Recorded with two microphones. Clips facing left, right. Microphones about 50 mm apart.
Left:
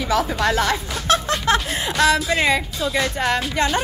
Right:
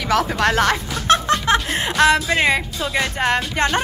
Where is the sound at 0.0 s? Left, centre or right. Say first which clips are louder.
Right 2 dB; right.